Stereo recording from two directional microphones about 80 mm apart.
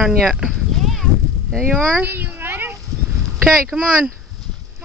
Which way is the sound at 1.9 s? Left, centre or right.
Right.